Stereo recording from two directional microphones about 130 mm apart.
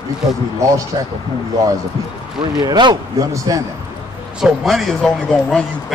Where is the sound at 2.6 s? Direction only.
35° right (ahead or behind).